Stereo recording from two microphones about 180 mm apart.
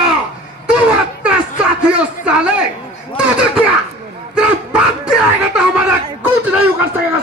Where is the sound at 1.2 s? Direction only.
5° right (ahead or behind).